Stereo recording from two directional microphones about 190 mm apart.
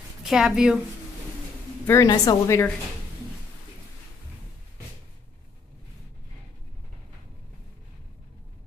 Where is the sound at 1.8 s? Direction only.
15° left (ahead or behind).